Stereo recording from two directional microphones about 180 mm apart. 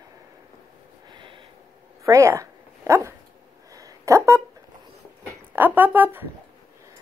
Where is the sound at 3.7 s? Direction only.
20° right (ahead or behind).